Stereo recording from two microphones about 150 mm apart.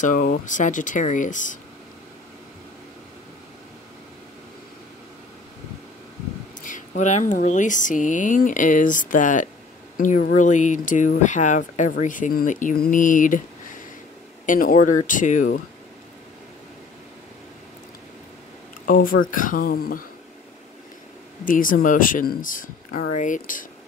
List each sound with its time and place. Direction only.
0.0 s speech: 65° left (ahead or behind)
6.6 s speech: 60° left (ahead or behind)
14.4 s speech: 65° left (ahead or behind)
18.9 s speech: 70° left (ahead or behind)
21.5 s speech: 65° left (ahead or behind)